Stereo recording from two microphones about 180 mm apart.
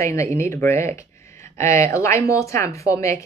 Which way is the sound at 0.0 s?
15° left (ahead or behind).